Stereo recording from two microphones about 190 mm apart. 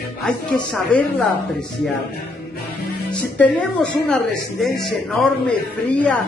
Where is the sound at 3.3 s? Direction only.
10° left (ahead or behind).